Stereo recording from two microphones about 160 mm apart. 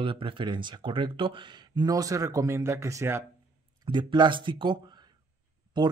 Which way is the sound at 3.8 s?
30° right (ahead or behind).